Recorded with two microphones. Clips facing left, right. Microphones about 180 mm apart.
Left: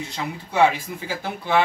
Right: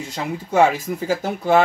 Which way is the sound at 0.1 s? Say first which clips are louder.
Right 9 dB; 45° right (ahead or behind).